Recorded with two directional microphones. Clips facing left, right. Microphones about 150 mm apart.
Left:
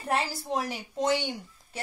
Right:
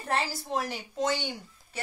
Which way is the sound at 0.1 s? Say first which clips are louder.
Left 1 dB; 10° left (ahead or behind).